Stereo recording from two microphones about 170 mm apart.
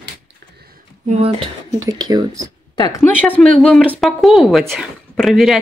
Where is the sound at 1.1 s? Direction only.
35° right (ahead or behind).